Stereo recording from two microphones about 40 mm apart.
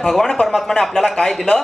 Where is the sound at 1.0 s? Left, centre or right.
Left.